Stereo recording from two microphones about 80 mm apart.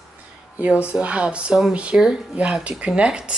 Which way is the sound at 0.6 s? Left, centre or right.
Centre.